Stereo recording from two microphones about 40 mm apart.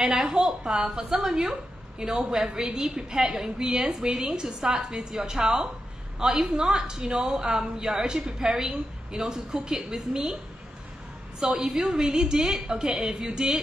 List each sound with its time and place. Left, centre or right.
0.0 s a woman's voice: centre